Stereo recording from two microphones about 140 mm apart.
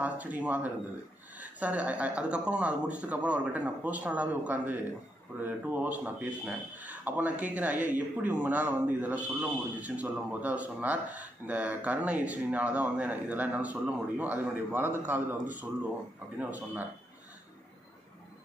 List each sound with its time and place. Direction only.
0.0 s speech: 10° right (ahead or behind)
16.3 s speech: 10° right (ahead or behind)